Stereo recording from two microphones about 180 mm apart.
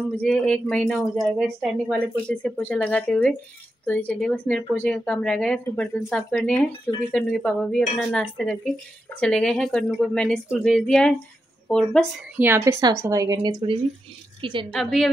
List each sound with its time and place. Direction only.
0.2 s speech: 5° left (ahead or behind)
12.4 s a woman's voice: 15° right (ahead or behind)
14.7 s speech: centre (ahead or behind)